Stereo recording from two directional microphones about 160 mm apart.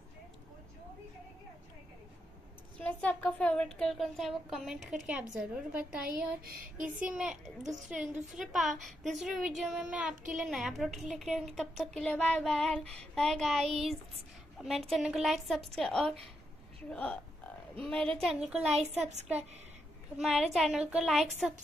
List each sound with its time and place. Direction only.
2.8 s a woman's voice: 10° left (ahead or behind); by 6.0 s 5° right (ahead or behind)
6.0 s a sound: 65° right (ahead or behind)
7.0 s a child's voice: 10° right (ahead or behind)
18.7 s a woman's voice: 40° right (ahead or behind)
20.2 s a woman's voice: centre (ahead or behind)